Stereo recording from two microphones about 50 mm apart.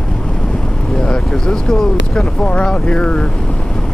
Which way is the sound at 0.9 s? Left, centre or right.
Centre.